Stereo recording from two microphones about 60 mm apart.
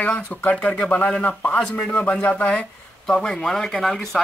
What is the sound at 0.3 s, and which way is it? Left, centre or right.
Speech, left.